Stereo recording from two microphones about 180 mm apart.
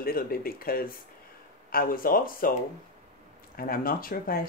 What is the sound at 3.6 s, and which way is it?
Speech, 55° left (ahead or behind).